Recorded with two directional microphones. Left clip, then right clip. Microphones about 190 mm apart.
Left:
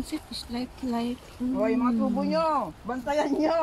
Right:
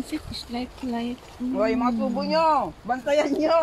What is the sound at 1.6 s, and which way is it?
Speech, 45° right (ahead or behind).